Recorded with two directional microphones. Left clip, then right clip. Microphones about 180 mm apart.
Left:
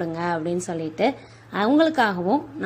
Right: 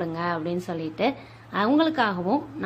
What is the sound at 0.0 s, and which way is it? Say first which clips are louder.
A woman's voice: left 2 dB; 15° left (ahead or behind).